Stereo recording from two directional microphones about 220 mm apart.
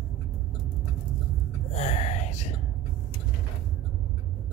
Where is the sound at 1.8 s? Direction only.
30° left (ahead or behind).